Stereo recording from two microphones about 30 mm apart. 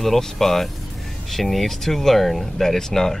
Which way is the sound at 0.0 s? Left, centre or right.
Centre.